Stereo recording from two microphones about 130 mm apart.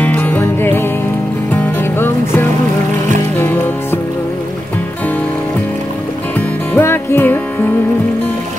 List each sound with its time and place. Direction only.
0.0 s music: 15° left (ahead or behind)
6.7 s music: 15° left (ahead or behind)